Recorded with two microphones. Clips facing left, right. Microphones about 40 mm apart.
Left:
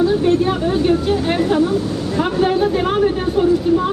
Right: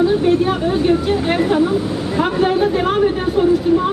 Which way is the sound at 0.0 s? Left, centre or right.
Centre.